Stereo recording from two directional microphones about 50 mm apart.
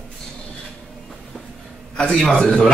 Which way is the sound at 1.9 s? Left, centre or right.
Centre.